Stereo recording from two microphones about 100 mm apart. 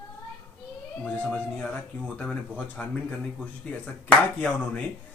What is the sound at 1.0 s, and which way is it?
Speech, 10° left (ahead or behind).